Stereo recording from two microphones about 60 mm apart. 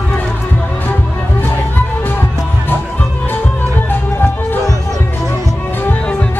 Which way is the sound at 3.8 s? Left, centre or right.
Left.